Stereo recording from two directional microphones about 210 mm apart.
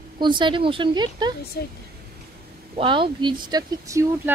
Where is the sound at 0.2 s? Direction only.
20° right (ahead or behind).